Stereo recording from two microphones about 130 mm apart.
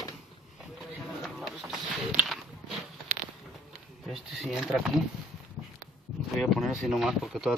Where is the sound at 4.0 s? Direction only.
5° right (ahead or behind).